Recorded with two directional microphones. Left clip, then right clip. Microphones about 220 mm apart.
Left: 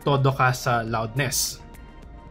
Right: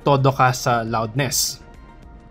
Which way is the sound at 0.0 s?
25° right (ahead or behind).